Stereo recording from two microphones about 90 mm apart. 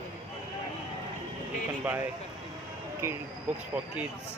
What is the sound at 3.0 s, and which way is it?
Speech, 25° right (ahead or behind).